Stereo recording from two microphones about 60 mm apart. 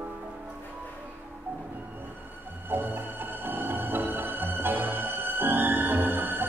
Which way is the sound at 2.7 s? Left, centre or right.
Right.